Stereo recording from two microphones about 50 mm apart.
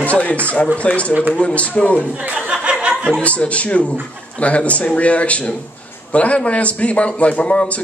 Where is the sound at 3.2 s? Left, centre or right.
Left.